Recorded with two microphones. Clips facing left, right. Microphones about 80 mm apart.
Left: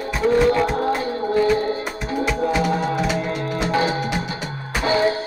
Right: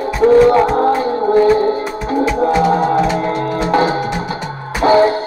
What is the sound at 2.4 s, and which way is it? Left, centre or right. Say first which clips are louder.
Music: right 8 dB; right.